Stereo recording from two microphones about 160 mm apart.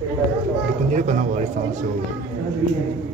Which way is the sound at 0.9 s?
50° right (ahead or behind).